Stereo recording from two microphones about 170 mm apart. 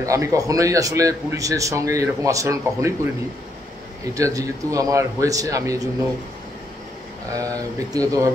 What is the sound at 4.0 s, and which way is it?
A man's voice, 20° right (ahead or behind).